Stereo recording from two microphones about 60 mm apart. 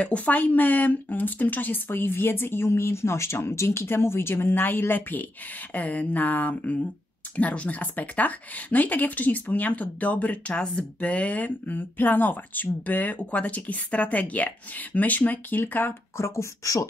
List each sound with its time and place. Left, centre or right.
0.0 s speech: left
16.2 s speech: left